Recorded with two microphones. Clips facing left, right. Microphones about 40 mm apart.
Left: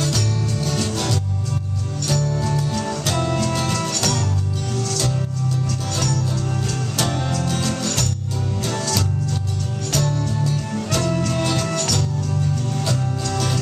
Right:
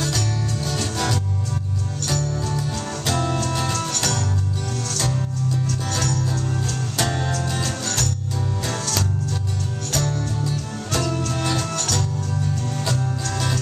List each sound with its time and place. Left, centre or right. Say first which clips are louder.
2.2 s music: left 3 dB; left
8.6 s music: left 4 dB; right
9.9 s music: left 3 dB; left